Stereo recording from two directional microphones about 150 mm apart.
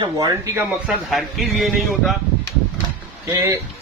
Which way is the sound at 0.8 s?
Centre (ahead or behind).